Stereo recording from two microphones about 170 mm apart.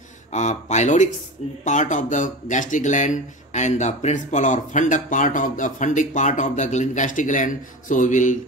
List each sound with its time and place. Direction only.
0.3 s speech: 45° left (ahead or behind)